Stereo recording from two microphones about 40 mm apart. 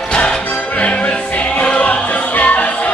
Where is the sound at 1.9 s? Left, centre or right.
Left.